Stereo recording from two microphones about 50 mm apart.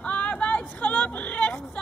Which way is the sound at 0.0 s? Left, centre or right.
Left.